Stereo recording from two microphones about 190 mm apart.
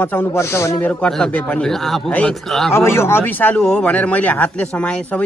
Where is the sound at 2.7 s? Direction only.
15° left (ahead or behind).